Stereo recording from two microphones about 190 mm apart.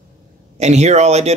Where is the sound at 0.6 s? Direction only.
35° right (ahead or behind).